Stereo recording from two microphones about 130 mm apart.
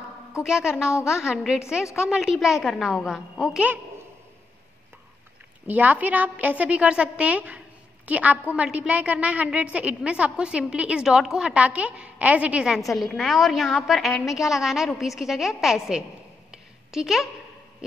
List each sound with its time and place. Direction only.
0.4 s a woman's voice: 5° right (ahead or behind)
0.8 s a woman's voice: 20° left (ahead or behind)
1.1 s a woman's voice: 5° right (ahead or behind)
5.7 s a woman's voice: 10° right (ahead or behind)